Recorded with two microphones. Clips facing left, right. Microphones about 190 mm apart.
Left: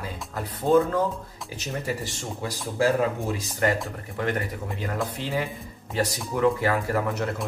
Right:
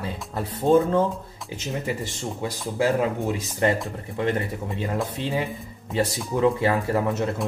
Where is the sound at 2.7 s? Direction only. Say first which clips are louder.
Even; 20° right (ahead or behind).